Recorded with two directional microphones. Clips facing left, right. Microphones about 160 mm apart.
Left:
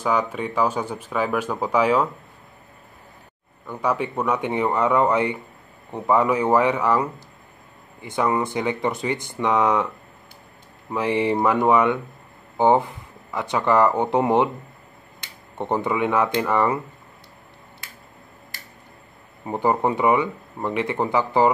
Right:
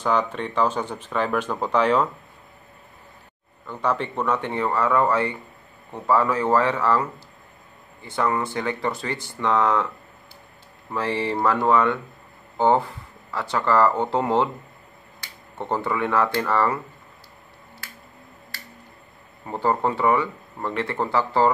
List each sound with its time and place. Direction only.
0.0 s speech: 10° left (ahead or behind)
3.6 s speech: 10° left (ahead or behind)
10.9 s speech: 15° left (ahead or behind)
19.4 s speech: 15° left (ahead or behind)